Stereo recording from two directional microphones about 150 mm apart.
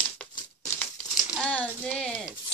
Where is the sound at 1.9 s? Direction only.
5° left (ahead or behind).